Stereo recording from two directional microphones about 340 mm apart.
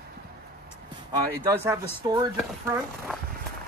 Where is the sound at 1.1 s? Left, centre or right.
Centre.